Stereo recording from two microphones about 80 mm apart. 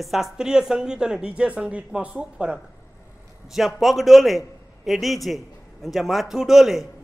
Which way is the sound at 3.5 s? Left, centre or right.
Centre.